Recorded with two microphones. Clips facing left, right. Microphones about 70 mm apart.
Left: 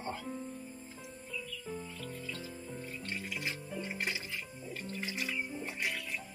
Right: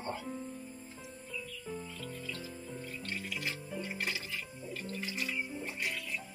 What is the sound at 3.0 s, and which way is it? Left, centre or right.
Music, centre.